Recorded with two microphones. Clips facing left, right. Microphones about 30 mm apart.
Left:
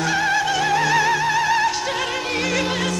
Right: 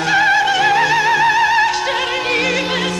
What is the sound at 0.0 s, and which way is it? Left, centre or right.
Music, right.